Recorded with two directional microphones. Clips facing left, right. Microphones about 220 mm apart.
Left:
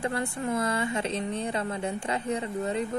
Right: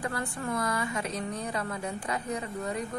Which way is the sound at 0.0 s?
25° left (ahead or behind).